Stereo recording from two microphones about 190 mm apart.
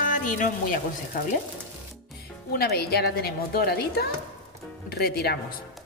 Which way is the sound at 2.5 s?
55° left (ahead or behind).